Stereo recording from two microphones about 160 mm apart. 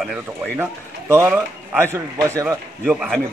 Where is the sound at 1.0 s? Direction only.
15° right (ahead or behind).